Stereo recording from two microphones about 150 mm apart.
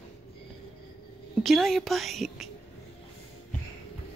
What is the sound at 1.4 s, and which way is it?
A woman's voice, centre (ahead or behind).